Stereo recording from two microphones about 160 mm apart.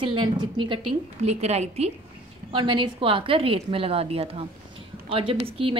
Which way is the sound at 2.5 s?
30° right (ahead or behind).